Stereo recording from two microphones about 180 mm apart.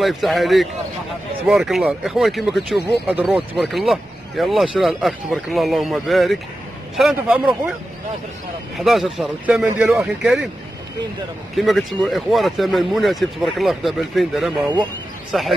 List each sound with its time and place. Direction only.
0.0 s speech: centre (ahead or behind)
8.7 s speech: centre (ahead or behind)
11.5 s speech: centre (ahead or behind)